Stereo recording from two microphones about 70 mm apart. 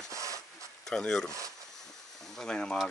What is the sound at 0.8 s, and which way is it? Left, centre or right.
Speech, centre.